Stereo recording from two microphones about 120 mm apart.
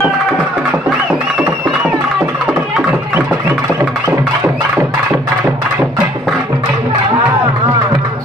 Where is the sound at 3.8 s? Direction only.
15° right (ahead or behind).